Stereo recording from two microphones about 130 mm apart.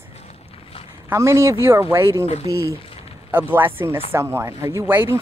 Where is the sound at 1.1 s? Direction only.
20° right (ahead or behind).